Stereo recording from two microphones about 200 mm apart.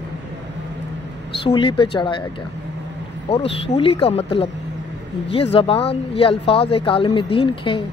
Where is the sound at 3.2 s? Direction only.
30° left (ahead or behind).